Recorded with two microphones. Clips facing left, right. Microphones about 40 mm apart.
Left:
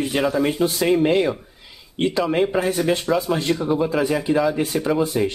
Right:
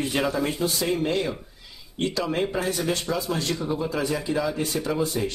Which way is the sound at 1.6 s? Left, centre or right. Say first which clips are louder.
Left 6 dB; left.